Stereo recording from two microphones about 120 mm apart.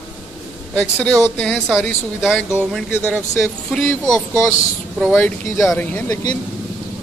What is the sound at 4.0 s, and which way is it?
Speech, centre (ahead or behind).